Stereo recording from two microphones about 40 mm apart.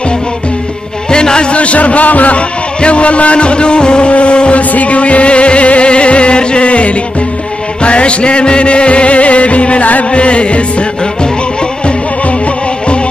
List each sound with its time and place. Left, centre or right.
1.1 s a man's voice: left
7.8 s music: left